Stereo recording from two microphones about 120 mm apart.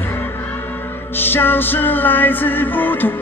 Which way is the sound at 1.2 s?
15° left (ahead or behind).